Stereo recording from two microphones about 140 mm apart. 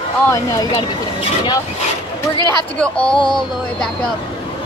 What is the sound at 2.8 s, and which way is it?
Speech, 5° left (ahead or behind).